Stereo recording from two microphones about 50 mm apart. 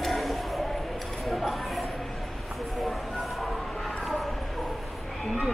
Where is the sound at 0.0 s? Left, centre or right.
Centre.